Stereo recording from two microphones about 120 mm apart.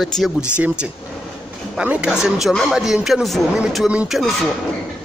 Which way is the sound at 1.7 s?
10° right (ahead or behind).